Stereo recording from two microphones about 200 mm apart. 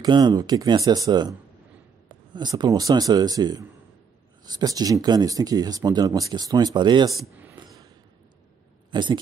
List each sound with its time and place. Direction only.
0.0 s speech: 20° right (ahead or behind)
7.5 s a sound: 20° right (ahead or behind)
8.9 s speech: 20° right (ahead or behind)